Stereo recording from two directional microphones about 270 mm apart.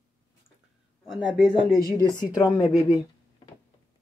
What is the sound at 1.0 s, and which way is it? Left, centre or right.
Speech, centre.